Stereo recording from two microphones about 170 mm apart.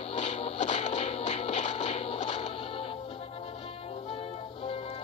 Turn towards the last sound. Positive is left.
turn(degrees=30)  # may be behind; listen again after turning